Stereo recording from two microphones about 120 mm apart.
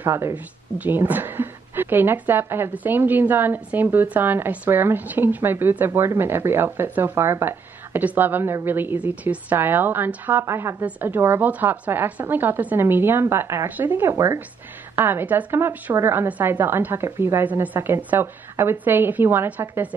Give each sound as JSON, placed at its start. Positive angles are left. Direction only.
{"t": 0.0, "sound": "a woman's voice", "side_deg": -20}